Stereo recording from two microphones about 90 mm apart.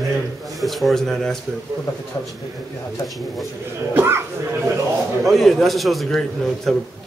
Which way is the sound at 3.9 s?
25° right (ahead or behind).